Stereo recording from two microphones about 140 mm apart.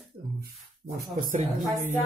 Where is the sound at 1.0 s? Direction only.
80° right.